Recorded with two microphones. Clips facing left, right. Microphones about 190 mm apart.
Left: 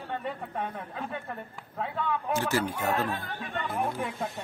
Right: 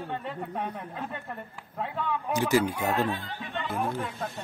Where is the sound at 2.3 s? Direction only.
15° right (ahead or behind).